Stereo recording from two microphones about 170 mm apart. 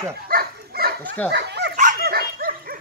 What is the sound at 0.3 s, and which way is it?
Dog, 60° right (ahead or behind).